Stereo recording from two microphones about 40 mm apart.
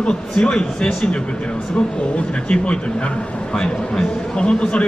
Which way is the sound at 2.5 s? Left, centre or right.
Left.